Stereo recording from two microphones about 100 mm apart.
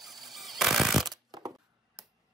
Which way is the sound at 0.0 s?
Centre (ahead or behind).